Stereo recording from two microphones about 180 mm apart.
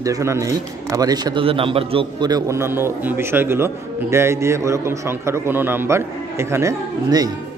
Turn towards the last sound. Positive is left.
turn(degrees=-20)  # may be behind; listen again after turning